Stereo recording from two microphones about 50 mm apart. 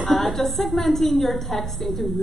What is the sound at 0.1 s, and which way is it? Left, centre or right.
A woman's voice, centre.